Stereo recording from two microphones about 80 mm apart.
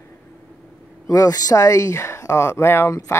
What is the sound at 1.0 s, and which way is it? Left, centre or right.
Speech, left.